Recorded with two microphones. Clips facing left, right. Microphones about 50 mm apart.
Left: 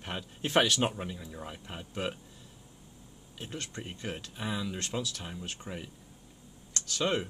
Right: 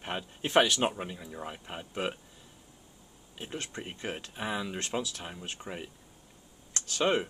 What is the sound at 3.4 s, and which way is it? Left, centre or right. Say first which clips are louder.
Speech: right 2 dB; centre.